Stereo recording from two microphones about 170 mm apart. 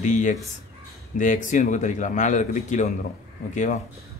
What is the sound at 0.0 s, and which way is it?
Speech, 45° left (ahead or behind).